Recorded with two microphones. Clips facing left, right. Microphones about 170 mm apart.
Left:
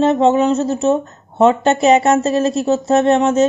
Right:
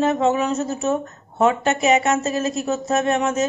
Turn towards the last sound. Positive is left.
turn(degrees=30)  # may be behind; listen again after turning